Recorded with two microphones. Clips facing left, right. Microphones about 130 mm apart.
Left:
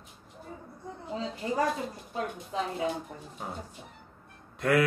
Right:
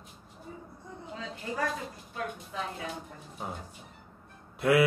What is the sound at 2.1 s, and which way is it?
Speech, 25° left (ahead or behind).